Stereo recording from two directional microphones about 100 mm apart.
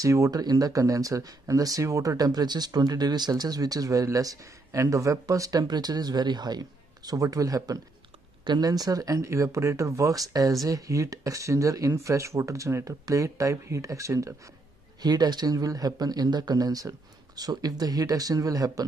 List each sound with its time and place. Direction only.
0.0 s speech: 35° right (ahead or behind)
15.0 s speech: 45° right (ahead or behind)